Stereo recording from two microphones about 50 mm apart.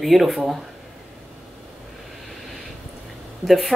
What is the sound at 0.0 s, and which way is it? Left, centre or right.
Speech, centre.